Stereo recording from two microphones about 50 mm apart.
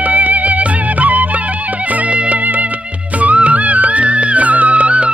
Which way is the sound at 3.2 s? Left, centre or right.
Right.